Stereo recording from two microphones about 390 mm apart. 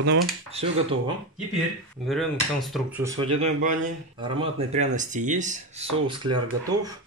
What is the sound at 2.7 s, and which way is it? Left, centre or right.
Speech, centre.